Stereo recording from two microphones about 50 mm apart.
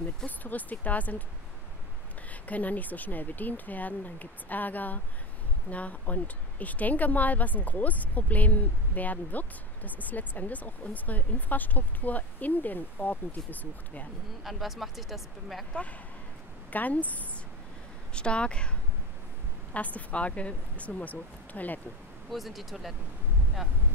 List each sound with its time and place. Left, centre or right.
0.4 s speech: left
2.4 s speech: left
14.4 s speech: centre
16.7 s speech: left
19.7 s speech: left
22.3 s speech: centre